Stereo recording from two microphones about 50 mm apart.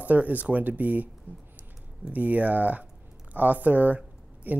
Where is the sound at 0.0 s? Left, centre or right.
Right.